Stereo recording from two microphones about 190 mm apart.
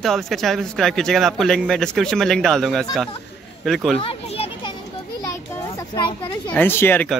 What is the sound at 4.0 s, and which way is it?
Children playing, 30° left (ahead or behind).